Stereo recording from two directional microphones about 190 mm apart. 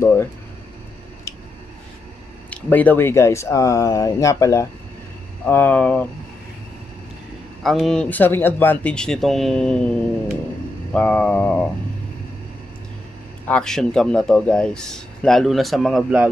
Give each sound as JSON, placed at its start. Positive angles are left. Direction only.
{"t": 0.0, "sound": "a sound", "side_deg": 10}
{"t": 2.5, "sound": "speech", "side_deg": 10}
{"t": 7.6, "sound": "a man's voice", "side_deg": 0}
{"t": 10.9, "sound": "speech", "side_deg": 5}
{"t": 13.5, "sound": "a man's voice", "side_deg": 5}